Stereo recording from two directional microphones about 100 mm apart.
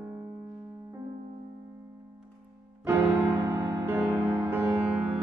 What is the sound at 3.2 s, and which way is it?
Music, 30° right (ahead or behind).